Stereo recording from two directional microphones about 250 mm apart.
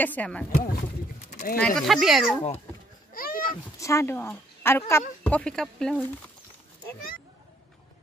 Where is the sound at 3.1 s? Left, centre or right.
Left.